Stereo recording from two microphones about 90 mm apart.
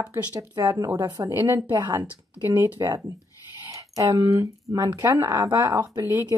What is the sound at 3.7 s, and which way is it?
Speech, 35° right (ahead or behind).